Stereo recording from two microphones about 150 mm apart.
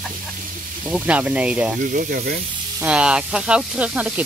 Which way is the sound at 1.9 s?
65° right (ahead or behind).